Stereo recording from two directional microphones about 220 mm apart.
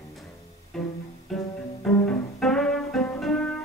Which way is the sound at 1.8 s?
5° left (ahead or behind).